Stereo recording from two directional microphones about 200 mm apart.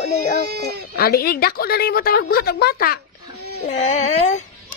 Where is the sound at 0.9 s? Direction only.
50° left (ahead or behind).